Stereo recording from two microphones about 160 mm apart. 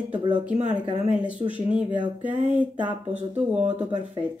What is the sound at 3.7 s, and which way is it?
Speech, 45° right (ahead or behind).